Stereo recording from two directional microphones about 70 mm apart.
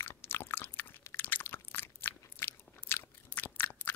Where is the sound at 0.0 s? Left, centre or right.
Left.